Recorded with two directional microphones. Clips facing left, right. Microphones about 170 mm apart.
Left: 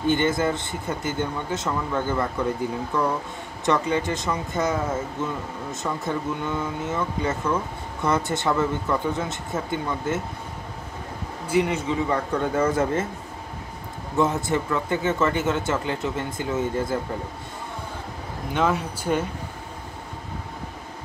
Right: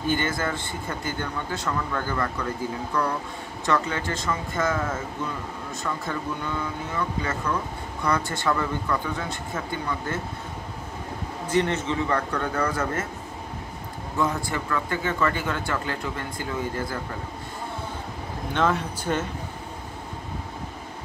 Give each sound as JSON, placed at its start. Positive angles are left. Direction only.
{"t": 0.1, "sound": "speech", "side_deg": 20}
{"t": 11.4, "sound": "a man's voice", "side_deg": 10}
{"t": 12.3, "sound": "speech", "side_deg": 20}
{"t": 14.1, "sound": "speech", "side_deg": 20}
{"t": 18.5, "sound": "a man's voice", "side_deg": 10}